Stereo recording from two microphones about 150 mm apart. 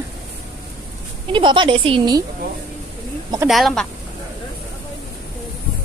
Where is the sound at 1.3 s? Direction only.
30° right (ahead or behind).